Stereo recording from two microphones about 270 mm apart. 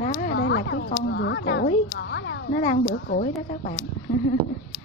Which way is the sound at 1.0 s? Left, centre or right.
Left.